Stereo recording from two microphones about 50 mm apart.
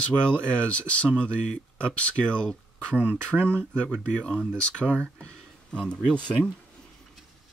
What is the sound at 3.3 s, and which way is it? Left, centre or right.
Speech, centre.